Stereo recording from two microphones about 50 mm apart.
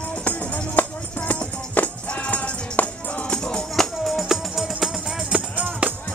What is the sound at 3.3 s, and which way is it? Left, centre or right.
Music, centre.